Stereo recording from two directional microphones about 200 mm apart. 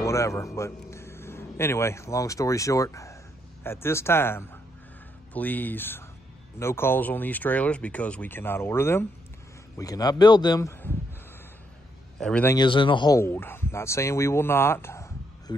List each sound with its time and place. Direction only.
0.0 s a man's voice: 15° left (ahead or behind)
12.2 s a man's voice: 5° left (ahead or behind)
12.5 s speech: 25° left (ahead or behind)